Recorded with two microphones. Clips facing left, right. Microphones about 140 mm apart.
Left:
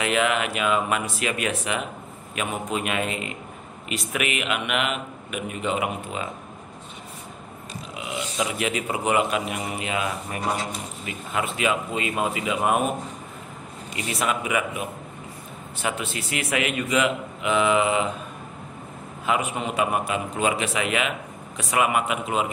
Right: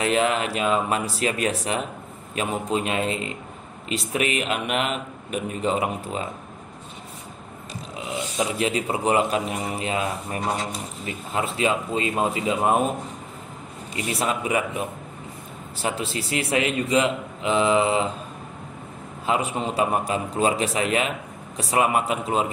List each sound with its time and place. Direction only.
0.0 s a man's voice: 35° right (ahead or behind)
7.9 s a man's voice: 30° right (ahead or behind)
13.9 s a man's voice: 30° right (ahead or behind)
19.2 s a man's voice: 30° right (ahead or behind)